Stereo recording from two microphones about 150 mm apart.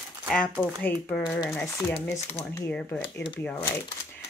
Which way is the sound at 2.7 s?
10° left (ahead or behind).